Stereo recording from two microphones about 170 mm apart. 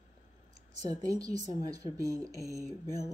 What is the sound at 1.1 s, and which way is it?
Speech, 20° right (ahead or behind).